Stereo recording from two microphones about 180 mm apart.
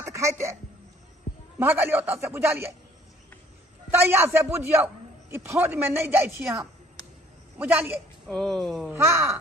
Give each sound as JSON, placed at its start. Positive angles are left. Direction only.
{"t": 0.0, "sound": "speech", "side_deg": -15}
{"t": 1.6, "sound": "a man's voice", "side_deg": -10}
{"t": 4.1, "sound": "a man's voice", "side_deg": -15}
{"t": 7.5, "sound": "a man's voice", "side_deg": -10}
{"t": 8.3, "sound": "speech", "side_deg": 5}
{"t": 8.9, "sound": "a man's voice", "side_deg": -15}